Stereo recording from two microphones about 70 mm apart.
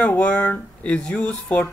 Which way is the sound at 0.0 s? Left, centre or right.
Left.